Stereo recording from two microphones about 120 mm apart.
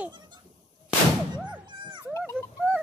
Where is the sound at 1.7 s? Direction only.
40° right (ahead or behind).